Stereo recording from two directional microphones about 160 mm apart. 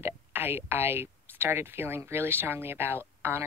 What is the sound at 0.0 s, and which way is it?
Speech, 15° right (ahead or behind).